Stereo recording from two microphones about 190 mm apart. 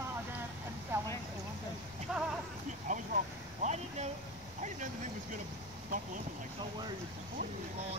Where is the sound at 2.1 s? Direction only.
5° right (ahead or behind).